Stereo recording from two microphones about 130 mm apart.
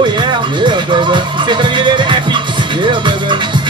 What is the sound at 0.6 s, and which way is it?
Music, 35° right (ahead or behind).